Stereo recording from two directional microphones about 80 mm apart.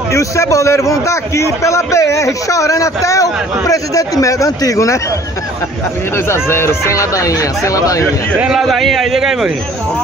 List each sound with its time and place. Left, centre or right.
0.1 s a man's voice: left
6.1 s a man's voice: left
8.4 s a man's voice: centre